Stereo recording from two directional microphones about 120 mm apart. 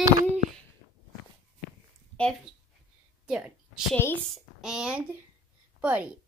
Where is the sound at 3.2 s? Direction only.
5° right (ahead or behind).